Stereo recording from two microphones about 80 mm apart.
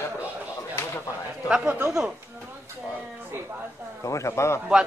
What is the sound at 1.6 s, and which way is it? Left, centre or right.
Speech, right.